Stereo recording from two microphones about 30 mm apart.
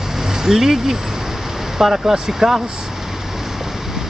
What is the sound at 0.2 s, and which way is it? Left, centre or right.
Speech, centre.